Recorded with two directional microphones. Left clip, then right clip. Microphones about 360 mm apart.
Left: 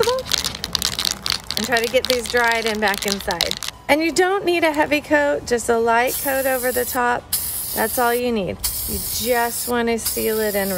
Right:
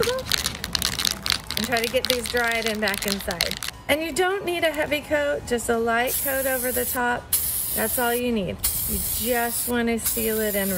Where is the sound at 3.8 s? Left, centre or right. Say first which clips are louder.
Left 6 dB; left.